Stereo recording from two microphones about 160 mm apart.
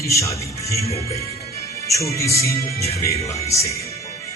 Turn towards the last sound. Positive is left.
turn(degrees=20)  # may be behind; listen again after turning